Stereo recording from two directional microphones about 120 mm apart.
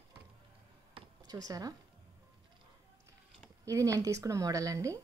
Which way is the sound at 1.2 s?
30° right (ahead or behind).